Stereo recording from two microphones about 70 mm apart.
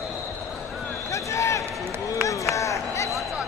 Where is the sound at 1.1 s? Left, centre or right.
Left.